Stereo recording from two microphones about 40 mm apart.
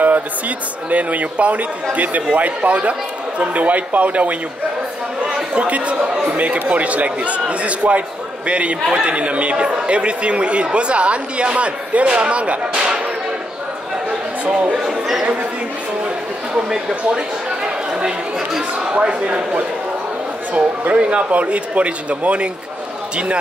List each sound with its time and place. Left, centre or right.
0.8 s speech: right
5.5 s speech: right
14.4 s speech: right
14.8 s a sound: centre
16.5 s speech: centre
20.5 s speech: right